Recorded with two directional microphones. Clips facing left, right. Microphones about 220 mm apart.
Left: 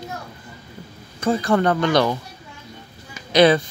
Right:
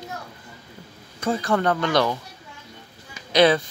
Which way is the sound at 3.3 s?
15° left (ahead or behind).